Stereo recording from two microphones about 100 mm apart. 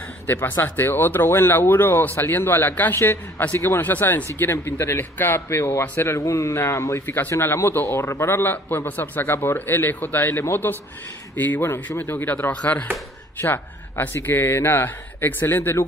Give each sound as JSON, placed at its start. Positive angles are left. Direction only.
{"t": 0.3, "sound": "speech", "side_deg": 20}